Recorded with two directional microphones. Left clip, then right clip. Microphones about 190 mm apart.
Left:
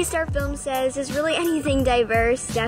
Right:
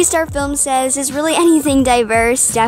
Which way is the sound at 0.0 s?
40° right (ahead or behind).